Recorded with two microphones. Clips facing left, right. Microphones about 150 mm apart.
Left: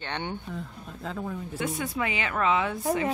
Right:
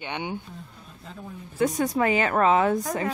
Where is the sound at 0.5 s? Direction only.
90° left.